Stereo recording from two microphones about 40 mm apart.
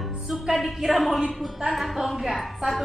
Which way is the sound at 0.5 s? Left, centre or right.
Centre.